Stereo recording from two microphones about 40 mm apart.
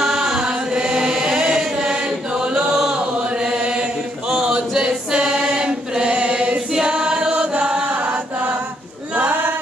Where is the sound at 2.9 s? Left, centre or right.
Right.